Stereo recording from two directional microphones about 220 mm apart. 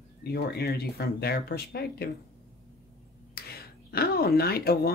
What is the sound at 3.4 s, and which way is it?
Speech, 45° left (ahead or behind).